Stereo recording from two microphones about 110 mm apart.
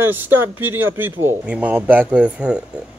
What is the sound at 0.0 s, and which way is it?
A man's voice, 20° right (ahead or behind).